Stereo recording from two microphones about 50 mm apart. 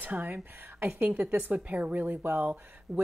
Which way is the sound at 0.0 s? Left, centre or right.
Right.